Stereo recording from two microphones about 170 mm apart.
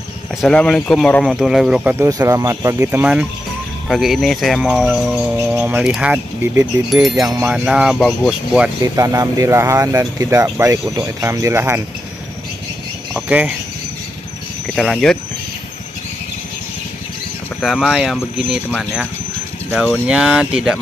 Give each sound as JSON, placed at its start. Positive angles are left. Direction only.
{"t": 0.4, "sound": "speech", "side_deg": 5}
{"t": 2.0, "sound": "speech", "side_deg": -20}
{"t": 3.9, "sound": "speech", "side_deg": 0}
{"t": 7.2, "sound": "speech", "side_deg": -20}
{"t": 7.4, "sound": "speech", "side_deg": -5}
{"t": 8.8, "sound": "speech", "side_deg": -20}
{"t": 13.1, "sound": "speech", "side_deg": -5}
{"t": 14.8, "sound": "speech", "side_deg": 0}
{"t": 17.6, "sound": "speech", "side_deg": 0}
{"t": 20.1, "sound": "speech", "side_deg": -5}